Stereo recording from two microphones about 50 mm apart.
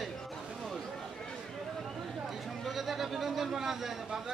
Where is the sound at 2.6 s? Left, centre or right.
Centre.